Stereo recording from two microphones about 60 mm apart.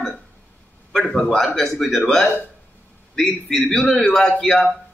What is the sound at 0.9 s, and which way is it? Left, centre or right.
A man's voice, centre.